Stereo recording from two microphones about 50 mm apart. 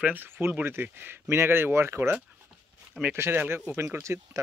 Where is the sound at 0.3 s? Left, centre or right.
Right.